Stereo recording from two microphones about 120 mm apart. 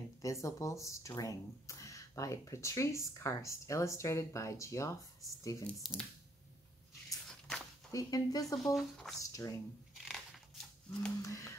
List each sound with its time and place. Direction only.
0.2 s speech: 25° left (ahead or behind)
5.8 s speech: centre (ahead or behind)
7.2 s walk: 5° left (ahead or behind)
7.9 s speech: 30° left (ahead or behind)
8.6 s speech: 5° left (ahead or behind)
9.3 s speech: 30° left (ahead or behind)
9.9 s crumpling: centre (ahead or behind)
11.2 s speech: 25° left (ahead or behind)